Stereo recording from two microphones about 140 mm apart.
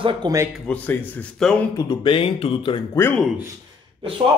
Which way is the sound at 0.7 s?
10° left (ahead or behind).